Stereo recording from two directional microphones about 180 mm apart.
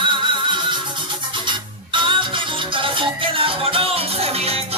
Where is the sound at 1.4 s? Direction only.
25° right (ahead or behind).